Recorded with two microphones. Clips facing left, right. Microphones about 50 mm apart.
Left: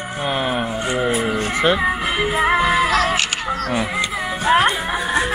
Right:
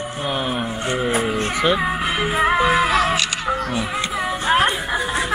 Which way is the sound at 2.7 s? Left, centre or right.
Centre.